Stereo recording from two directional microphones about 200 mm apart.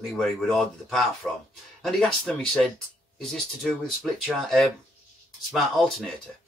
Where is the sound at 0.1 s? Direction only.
Centre (ahead or behind).